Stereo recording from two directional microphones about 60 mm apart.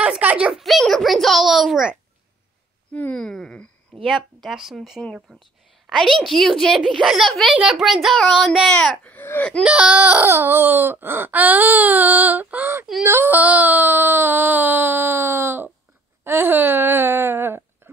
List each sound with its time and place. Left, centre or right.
0.2 s a child's voice: right
0.5 s a child's voice: centre
3.2 s speech: centre
4.0 s a child's voice: centre
9.0 s speech: left
9.6 s speech: centre
10.2 s a sound: right